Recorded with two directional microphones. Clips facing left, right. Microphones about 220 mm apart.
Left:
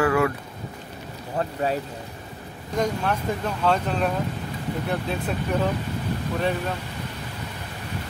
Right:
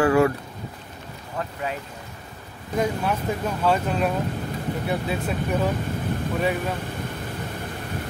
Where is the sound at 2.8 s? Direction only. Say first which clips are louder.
Even; 5° right (ahead or behind).